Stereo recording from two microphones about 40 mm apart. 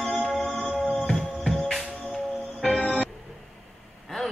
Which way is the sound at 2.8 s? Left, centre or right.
Left.